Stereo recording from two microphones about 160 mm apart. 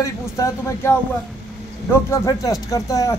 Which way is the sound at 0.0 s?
20° left (ahead or behind).